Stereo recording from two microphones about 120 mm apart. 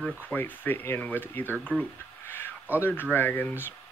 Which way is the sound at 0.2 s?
15° left (ahead or behind).